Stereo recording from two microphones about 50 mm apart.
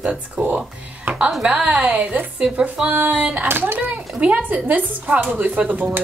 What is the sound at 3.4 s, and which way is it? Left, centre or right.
Speech, right.